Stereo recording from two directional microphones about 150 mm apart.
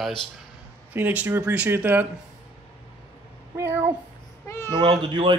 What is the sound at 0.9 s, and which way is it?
Speech, 15° right (ahead or behind).